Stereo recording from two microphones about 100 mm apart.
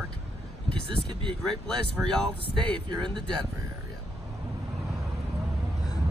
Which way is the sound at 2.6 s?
50° right (ahead or behind).